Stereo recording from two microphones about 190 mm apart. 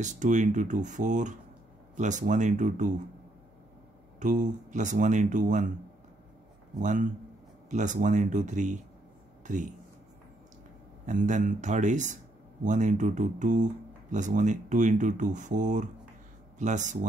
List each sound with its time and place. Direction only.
0.0 s speech: 40° right (ahead or behind)
4.2 s speech: 40° right (ahead or behind)
6.8 s speech: 40° right (ahead or behind)
11.1 s speech: 40° right (ahead or behind)